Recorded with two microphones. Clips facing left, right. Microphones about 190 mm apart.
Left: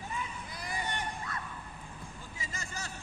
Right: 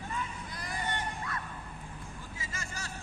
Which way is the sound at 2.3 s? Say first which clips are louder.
Left 1 dB; 20° left (ahead or behind).